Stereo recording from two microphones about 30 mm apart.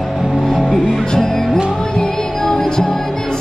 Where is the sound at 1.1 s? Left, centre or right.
Centre.